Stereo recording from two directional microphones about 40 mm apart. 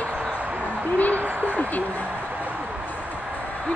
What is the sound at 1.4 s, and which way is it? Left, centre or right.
Speech, left.